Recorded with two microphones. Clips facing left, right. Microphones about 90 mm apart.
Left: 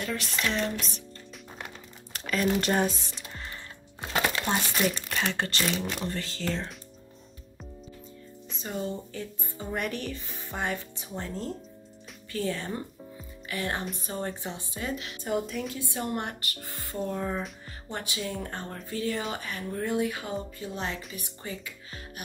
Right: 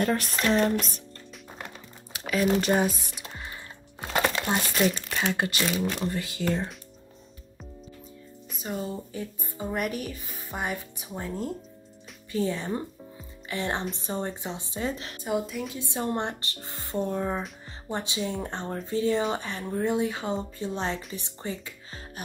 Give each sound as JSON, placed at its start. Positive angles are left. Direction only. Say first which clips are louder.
{"t": 0.0, "sound": "music", "louder": "right 5 dB", "side_deg": -45}
{"t": 2.1, "sound": "speech", "louder": "right 2 dB", "side_deg": -5}
{"t": 4.6, "sound": "speech", "louder": "right 3 dB", "side_deg": 0}
{"t": 8.5, "sound": "music", "louder": "even", "side_deg": -5}
{"t": 9.1, "sound": "speech", "louder": "right 2 dB", "side_deg": -15}
{"t": 15.2, "sound": "speech", "louder": "right 1 dB", "side_deg": -5}
{"t": 15.7, "sound": "speech", "louder": "right 2 dB", "side_deg": -20}